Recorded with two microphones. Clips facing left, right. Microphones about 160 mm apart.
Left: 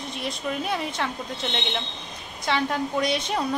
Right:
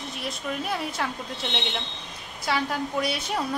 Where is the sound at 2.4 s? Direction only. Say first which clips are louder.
Left 2 dB; 5° right (ahead or behind).